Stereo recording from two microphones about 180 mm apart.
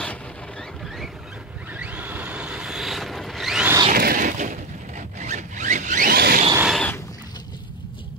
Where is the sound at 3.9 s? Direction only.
55° right (ahead or behind).